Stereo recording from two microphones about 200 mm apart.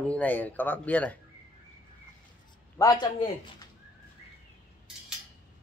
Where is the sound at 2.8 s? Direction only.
20° left (ahead or behind).